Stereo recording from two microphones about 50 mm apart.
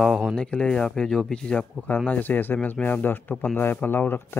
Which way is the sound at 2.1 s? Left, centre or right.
Left.